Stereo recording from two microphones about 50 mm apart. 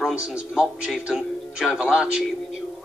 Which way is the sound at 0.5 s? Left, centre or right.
Centre.